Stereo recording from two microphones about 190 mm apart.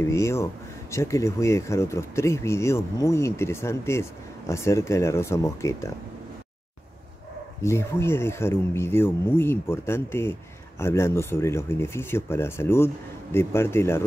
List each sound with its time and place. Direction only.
0.0 s speech: 15° left (ahead or behind)
7.6 s speech: 15° left (ahead or behind)